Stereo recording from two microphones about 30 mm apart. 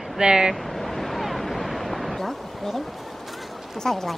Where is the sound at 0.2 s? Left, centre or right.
Right.